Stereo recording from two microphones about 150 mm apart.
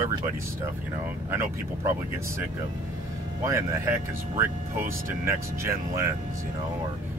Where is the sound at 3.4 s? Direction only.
20° right (ahead or behind).